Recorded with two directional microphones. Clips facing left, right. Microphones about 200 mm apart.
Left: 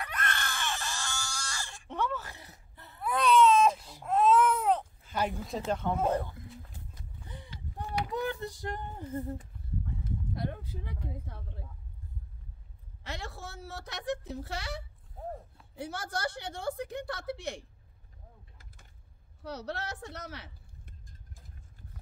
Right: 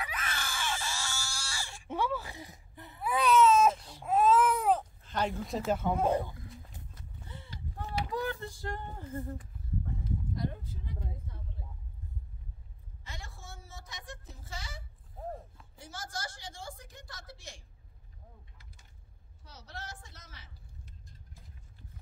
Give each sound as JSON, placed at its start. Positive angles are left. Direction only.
{"t": 0.0, "sound": "screaming", "side_deg": -5}
{"t": 3.7, "sound": "baby cry", "side_deg": 10}
{"t": 4.0, "sound": "baby cry", "side_deg": -5}
{"t": 5.0, "sound": "a sound", "side_deg": 10}
{"t": 5.7, "sound": "speech", "side_deg": -5}
{"t": 6.7, "sound": "horse", "side_deg": 15}
{"t": 7.7, "sound": "a sound", "side_deg": 20}
{"t": 10.3, "sound": "a sound", "side_deg": 65}
{"t": 13.0, "sound": "a woman's voice", "side_deg": 70}
{"t": 19.4, "sound": "speech", "side_deg": 65}